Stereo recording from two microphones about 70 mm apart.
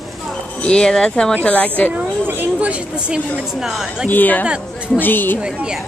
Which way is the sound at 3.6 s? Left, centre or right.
Centre.